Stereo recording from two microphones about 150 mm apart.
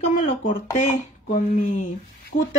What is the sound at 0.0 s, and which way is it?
Speech, 55° left (ahead or behind).